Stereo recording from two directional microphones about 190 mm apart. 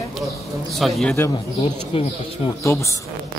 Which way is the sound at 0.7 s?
Centre (ahead or behind).